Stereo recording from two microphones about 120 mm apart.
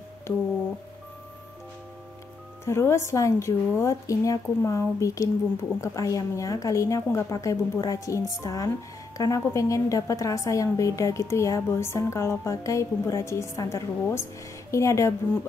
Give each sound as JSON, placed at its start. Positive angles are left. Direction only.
{"t": 2.6, "sound": "speech", "side_deg": 20}